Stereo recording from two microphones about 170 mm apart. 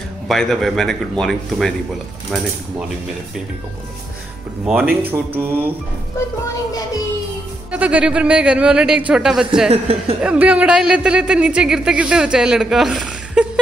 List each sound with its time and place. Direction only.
0.3 s speech: centre (ahead or behind)
4.6 s speech: 10° right (ahead or behind)
7.7 s speech: 5° right (ahead or behind)
9.7 s speech: 35° right (ahead or behind)
10.2 s speech: 5° right (ahead or behind)